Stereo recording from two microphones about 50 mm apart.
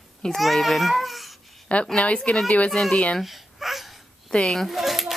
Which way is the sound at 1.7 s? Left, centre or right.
Left.